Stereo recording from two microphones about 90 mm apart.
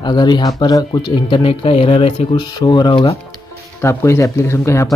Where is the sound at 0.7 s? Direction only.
40° left (ahead or behind).